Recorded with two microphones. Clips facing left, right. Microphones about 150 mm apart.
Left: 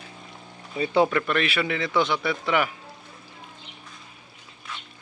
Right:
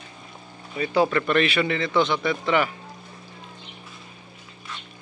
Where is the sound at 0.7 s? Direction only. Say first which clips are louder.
Even; 20° left (ahead or behind).